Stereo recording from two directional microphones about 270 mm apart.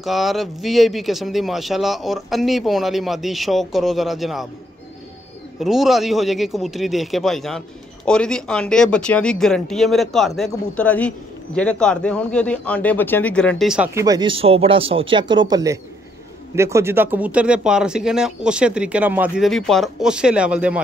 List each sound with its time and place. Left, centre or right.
0.0 s speech: centre
5.6 s speech: centre